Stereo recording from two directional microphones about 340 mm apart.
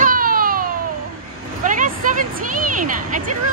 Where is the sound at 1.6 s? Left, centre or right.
Right.